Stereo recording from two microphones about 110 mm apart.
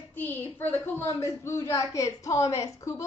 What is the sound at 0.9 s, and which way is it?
Speech, 30° left (ahead or behind).